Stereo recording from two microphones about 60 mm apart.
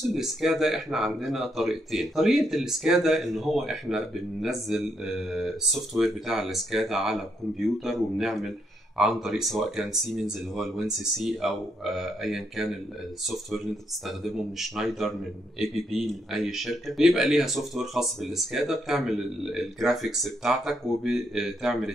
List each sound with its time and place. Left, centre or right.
0.1 s speech: centre